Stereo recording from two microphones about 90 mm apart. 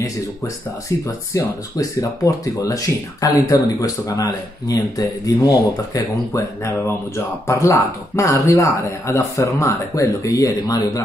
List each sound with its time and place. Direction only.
1.0 s speech: 40° left (ahead or behind)